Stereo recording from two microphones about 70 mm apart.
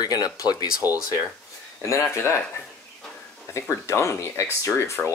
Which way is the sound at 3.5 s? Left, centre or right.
Left.